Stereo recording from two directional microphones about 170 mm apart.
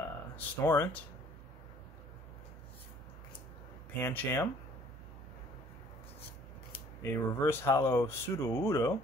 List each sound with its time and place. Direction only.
0.4 s speech: 10° left (ahead or behind)
4.0 s speech: 10° left (ahead or behind)
7.0 s speech: 15° left (ahead or behind)